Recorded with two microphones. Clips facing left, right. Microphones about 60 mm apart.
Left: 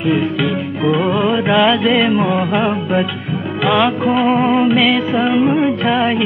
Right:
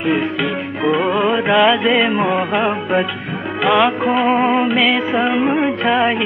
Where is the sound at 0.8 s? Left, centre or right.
Centre.